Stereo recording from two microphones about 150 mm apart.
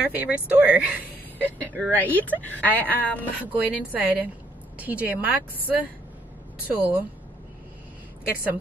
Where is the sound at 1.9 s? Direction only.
10° left (ahead or behind).